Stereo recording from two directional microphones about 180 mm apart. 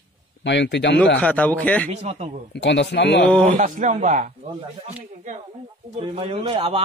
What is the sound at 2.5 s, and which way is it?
Speech, 75° left (ahead or behind).